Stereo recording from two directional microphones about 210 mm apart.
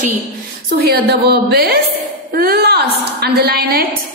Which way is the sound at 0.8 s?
50° right (ahead or behind).